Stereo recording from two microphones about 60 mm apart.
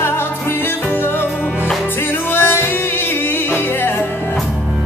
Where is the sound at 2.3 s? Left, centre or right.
Left.